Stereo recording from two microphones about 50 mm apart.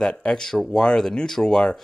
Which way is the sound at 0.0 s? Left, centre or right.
Centre.